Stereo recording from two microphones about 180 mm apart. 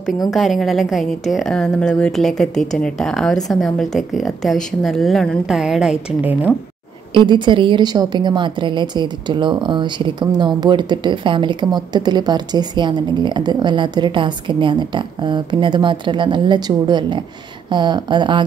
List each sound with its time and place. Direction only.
0.3 s a woman's voice: centre (ahead or behind)
7.2 s a woman's voice: 25° right (ahead or behind)